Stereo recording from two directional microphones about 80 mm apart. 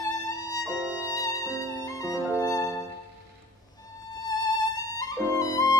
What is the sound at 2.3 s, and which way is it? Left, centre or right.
Music, left.